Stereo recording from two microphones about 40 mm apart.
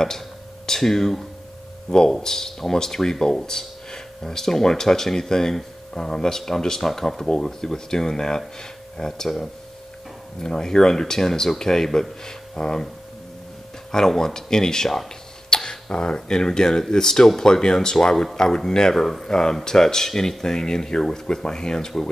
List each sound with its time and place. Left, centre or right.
0.7 s speech: centre
13.9 s speech: centre
18.9 s speech: centre